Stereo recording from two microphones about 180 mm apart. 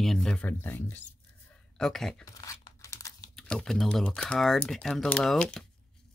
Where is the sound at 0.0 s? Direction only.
5° left (ahead or behind).